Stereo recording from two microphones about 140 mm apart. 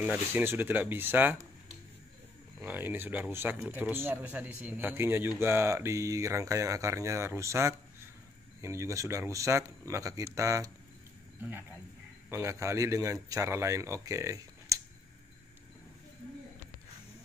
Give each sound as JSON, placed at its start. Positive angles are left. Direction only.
{"t": 0.0, "sound": "speech", "side_deg": -15}
{"t": 2.6, "sound": "a man's voice", "side_deg": -15}
{"t": 12.3, "sound": "a man's voice", "side_deg": -20}